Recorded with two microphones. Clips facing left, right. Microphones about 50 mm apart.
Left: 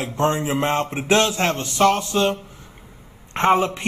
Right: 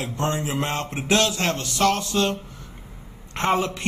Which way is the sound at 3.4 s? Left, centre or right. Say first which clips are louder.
Left 5 dB; left.